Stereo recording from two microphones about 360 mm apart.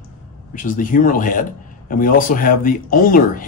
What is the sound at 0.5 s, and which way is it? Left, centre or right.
A man's voice, left.